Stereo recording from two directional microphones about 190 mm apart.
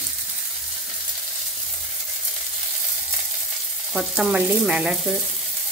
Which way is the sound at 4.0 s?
5° right (ahead or behind).